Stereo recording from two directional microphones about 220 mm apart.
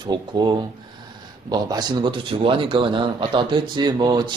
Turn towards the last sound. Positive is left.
turn(degrees=-20)  # may be behind; listen again after turning